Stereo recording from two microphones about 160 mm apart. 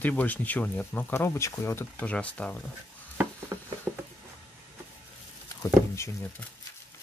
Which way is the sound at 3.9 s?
Centre (ahead or behind).